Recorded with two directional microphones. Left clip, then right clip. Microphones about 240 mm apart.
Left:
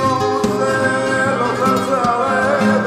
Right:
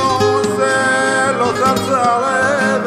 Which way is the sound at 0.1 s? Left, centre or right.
Centre.